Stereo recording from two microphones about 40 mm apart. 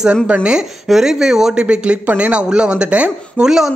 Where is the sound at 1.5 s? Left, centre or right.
Right.